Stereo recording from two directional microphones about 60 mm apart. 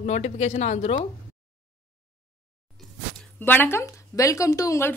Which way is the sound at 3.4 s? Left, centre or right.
Left.